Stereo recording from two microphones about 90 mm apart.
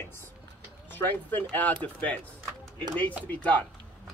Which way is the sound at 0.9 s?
20° left (ahead or behind).